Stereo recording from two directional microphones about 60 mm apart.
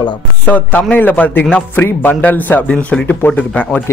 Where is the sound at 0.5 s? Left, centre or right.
Left.